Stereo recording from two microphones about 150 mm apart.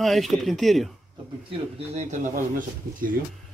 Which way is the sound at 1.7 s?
50° right (ahead or behind).